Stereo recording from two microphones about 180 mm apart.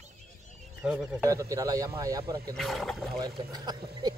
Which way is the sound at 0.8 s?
5° right (ahead or behind).